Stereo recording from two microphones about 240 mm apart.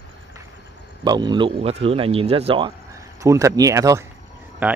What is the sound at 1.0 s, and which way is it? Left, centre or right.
Speech, centre.